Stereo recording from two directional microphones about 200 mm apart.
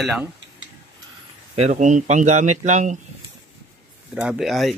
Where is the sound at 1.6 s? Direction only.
35° right (ahead or behind).